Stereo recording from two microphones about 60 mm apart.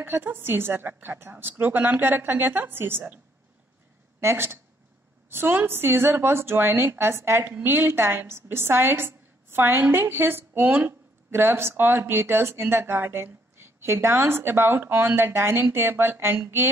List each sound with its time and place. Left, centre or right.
0.0 s speech: right
4.2 s speech: right